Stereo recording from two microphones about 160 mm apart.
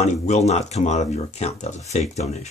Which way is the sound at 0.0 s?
45° left (ahead or behind).